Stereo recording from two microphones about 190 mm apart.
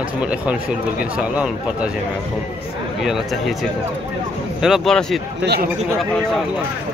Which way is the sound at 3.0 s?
Centre (ahead or behind).